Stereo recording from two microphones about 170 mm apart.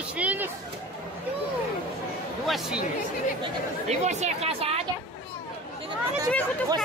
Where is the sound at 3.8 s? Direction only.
40° right (ahead or behind).